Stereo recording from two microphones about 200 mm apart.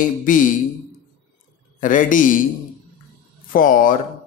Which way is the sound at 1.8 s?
40° left (ahead or behind).